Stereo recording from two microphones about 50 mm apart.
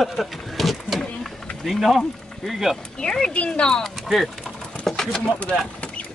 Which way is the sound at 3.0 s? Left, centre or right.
Centre.